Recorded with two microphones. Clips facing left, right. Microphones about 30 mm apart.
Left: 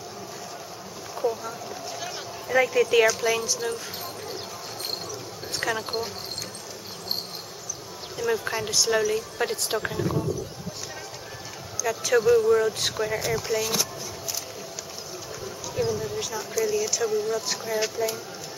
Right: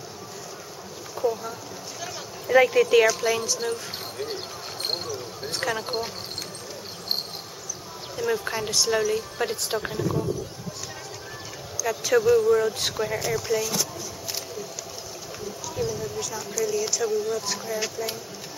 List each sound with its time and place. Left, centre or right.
1.1 s speech: centre
2.5 s speech: centre
5.6 s speech: centre
8.2 s speech: centre
11.8 s speech: centre
15.7 s speech: centre